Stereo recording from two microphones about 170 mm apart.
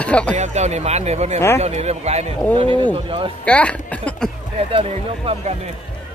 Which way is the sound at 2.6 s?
30° right (ahead or behind).